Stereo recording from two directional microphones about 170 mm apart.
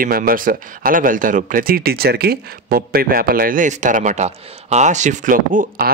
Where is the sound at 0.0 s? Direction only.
55° right (ahead or behind).